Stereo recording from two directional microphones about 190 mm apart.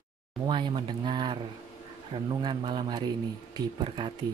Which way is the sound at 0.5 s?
25° right (ahead or behind).